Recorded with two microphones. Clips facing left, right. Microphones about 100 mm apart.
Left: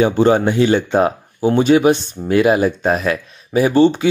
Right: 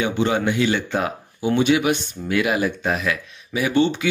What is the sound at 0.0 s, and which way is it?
Speech, 35° left (ahead or behind).